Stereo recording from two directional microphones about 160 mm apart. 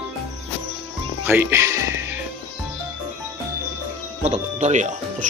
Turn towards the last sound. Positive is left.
turn(degrees=-50)  # may be behind; listen again after turning